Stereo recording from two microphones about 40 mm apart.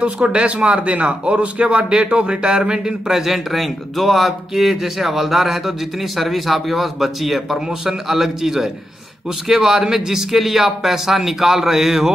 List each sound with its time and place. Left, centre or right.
0.0 s speech: right
3.1 s speech: centre